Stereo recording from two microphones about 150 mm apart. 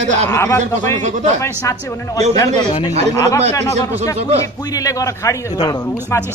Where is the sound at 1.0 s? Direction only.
50° right (ahead or behind).